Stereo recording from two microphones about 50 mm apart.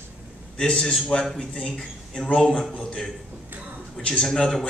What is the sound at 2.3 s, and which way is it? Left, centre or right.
Speech, centre.